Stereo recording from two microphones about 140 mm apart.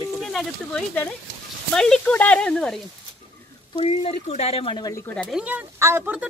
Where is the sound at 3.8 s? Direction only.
45° left (ahead or behind).